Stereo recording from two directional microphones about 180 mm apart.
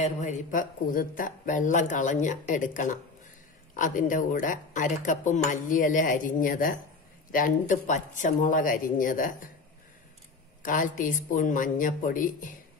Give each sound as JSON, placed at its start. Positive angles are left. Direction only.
{"t": 0.0, "sound": "speech", "side_deg": 40}
{"t": 10.6, "sound": "speech", "side_deg": 50}